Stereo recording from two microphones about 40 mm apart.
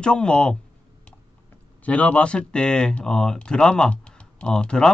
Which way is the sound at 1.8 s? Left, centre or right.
Left.